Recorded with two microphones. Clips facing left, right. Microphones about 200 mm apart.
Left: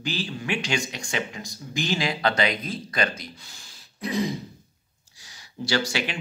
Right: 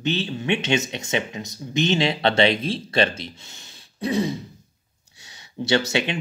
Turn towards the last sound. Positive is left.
turn(degrees=-25)  # may be behind; listen again after turning